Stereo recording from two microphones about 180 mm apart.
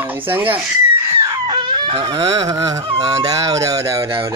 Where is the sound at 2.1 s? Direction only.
20° right (ahead or behind).